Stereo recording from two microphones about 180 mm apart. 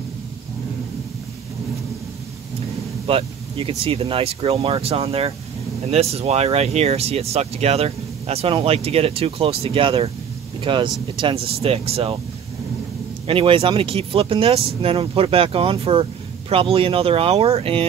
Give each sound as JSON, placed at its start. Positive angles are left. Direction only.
{"t": 3.1, "sound": "speech", "side_deg": -30}
{"t": 13.3, "sound": "speech", "side_deg": -30}